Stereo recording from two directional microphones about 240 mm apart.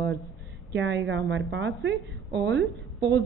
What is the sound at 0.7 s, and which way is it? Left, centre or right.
A woman's voice, right.